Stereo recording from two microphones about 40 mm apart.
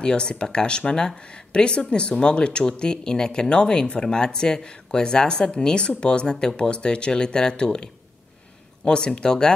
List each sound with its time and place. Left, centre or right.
0.0 s speech: left